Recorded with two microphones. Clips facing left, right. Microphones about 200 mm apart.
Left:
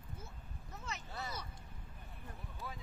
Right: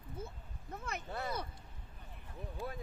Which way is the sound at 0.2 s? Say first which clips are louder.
Right 7 dB; 55° right (ahead or behind).